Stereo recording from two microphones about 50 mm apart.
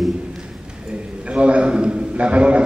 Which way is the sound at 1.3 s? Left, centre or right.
Right.